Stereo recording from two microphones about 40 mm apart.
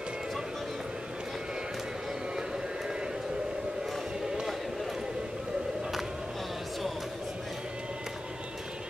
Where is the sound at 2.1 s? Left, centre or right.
Centre.